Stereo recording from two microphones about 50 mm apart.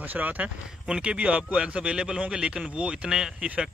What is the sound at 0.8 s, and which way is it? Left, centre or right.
Speech, centre.